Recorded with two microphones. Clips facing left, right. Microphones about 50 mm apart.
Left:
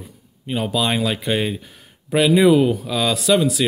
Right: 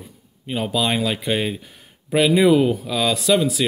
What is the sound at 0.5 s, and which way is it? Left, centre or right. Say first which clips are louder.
Speech: left 1 dB; centre.